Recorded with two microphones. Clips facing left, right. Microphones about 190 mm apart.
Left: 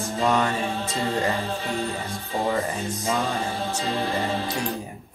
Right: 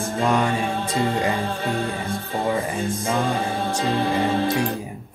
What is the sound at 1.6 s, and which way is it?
Music, 55° right (ahead or behind).